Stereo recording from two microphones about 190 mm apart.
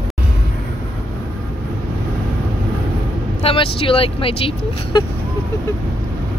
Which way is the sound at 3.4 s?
30° left (ahead or behind).